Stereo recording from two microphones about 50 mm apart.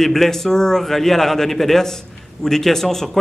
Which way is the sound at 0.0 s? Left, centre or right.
Centre.